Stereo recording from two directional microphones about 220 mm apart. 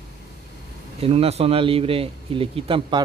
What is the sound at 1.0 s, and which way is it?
A man's voice, 25° right (ahead or behind).